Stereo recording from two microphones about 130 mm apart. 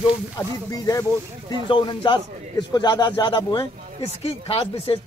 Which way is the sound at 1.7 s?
35° left (ahead or behind).